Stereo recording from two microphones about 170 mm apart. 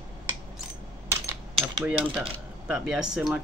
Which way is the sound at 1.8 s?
10° right (ahead or behind).